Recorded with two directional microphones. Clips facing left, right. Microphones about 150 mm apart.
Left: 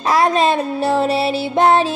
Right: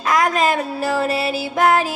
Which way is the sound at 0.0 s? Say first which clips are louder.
Left 3 dB; 30° left (ahead or behind).